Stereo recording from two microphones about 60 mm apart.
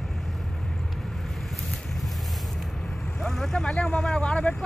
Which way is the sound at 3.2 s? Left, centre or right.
Centre.